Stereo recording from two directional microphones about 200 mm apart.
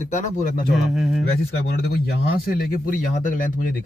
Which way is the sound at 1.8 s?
50° left (ahead or behind).